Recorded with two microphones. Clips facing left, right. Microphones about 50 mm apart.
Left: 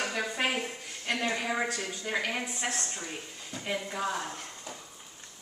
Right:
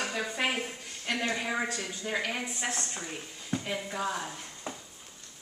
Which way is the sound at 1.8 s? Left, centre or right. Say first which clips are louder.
Left 1 dB; centre.